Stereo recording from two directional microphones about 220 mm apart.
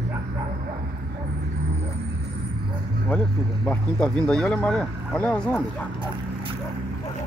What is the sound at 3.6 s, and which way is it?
Speech, 5° left (ahead or behind).